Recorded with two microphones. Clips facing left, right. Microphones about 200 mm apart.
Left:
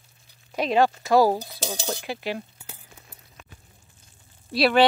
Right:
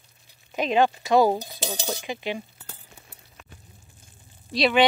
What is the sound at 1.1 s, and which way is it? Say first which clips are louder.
Cutlery: even; centre (ahead or behind).